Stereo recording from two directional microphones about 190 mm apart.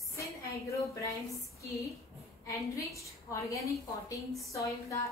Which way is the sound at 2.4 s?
15° left (ahead or behind).